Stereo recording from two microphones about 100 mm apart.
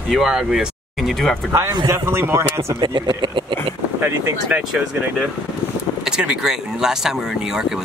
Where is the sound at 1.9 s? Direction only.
25° right (ahead or behind).